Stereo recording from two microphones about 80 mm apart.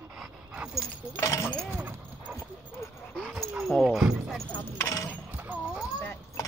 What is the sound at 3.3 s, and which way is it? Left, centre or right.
Dog, centre.